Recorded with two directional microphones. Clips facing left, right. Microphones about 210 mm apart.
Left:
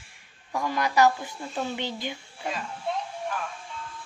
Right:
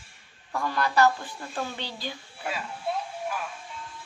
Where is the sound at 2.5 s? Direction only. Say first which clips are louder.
Even; 5° right (ahead or behind).